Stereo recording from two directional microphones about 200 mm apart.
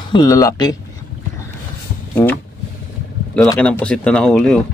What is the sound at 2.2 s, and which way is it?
Speech, 10° left (ahead or behind).